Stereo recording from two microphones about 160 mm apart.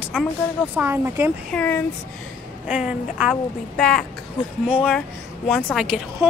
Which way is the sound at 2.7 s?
5° right (ahead or behind).